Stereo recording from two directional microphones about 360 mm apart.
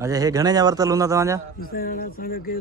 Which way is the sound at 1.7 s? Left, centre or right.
Left.